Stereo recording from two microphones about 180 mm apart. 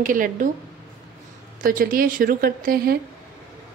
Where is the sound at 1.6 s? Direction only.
50° right (ahead or behind).